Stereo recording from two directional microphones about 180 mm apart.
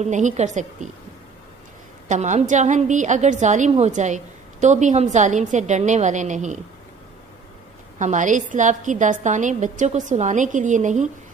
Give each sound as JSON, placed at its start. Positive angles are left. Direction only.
{"t": 0.0, "sound": "a woman's voice", "side_deg": -40}
{"t": 2.0, "sound": "a woman's voice", "side_deg": -40}
{"t": 8.0, "sound": "a woman's voice", "side_deg": -45}